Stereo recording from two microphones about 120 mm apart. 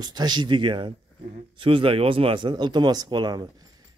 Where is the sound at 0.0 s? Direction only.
35° right (ahead or behind).